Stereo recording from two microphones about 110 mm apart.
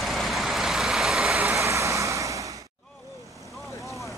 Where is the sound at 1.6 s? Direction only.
25° right (ahead or behind).